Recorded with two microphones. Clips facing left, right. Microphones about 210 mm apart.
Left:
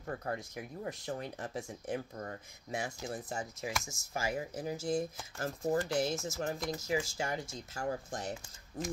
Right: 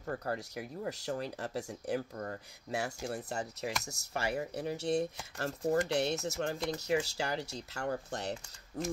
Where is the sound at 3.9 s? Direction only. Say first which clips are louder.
Right 1 dB; 70° right (ahead or behind).